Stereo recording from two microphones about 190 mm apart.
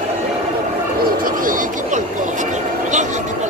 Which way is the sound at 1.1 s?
45° right (ahead or behind).